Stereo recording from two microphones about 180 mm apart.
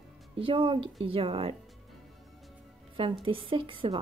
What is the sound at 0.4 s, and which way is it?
A woman's voice, 30° right (ahead or behind).